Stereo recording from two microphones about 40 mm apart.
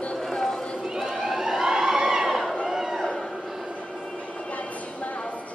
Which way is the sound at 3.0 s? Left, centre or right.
Centre.